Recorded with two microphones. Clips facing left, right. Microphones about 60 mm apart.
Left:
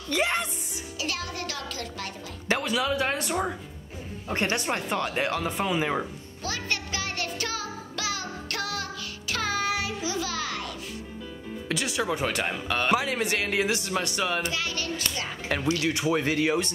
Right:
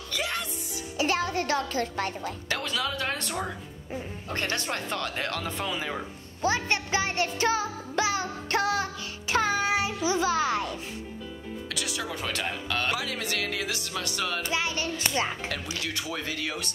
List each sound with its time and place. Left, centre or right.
0.1 s speech: left
0.9 s speech: right
2.6 s speech: centre
6.4 s music: right
9.3 s child singing: right
10.0 s music: right
11.7 s speech: left
14.5 s a child's voice: right
15.4 s speech: left